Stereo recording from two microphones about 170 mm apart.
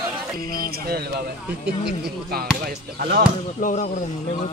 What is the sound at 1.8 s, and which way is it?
Speech, 70° right (ahead or behind).